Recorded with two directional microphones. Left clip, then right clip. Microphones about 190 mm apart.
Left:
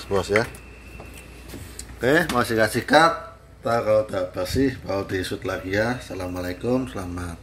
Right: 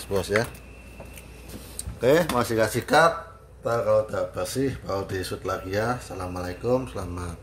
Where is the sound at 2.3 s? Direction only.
10° right (ahead or behind).